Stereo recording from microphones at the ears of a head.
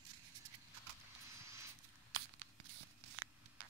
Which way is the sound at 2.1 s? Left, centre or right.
Right.